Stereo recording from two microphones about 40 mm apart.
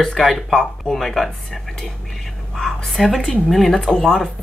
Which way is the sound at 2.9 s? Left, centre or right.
Centre.